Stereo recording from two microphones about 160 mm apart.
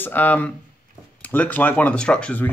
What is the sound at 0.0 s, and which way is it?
Speech, 10° left (ahead or behind).